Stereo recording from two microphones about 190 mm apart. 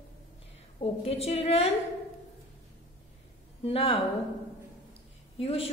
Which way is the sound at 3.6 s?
30° left (ahead or behind).